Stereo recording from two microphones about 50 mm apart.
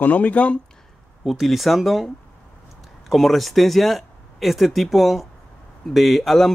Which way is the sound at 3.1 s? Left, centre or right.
Centre.